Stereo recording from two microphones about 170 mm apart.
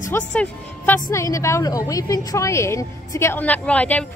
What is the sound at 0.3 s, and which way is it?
A woman's voice, 10° left (ahead or behind).